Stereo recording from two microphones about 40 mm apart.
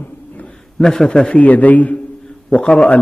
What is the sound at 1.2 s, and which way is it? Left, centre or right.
Speech, left.